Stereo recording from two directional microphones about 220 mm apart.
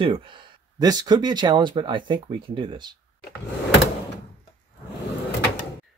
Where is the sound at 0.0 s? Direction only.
25° right (ahead or behind).